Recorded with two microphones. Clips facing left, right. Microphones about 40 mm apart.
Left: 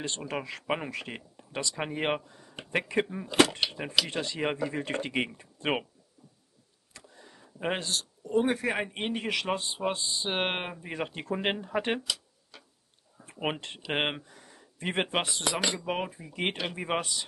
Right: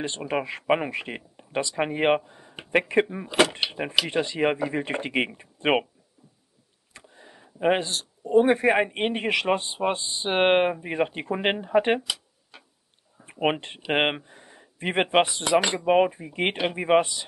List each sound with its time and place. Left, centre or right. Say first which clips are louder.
0.0 s speech: right 6 dB; right
6.9 s speech: right 3 dB; right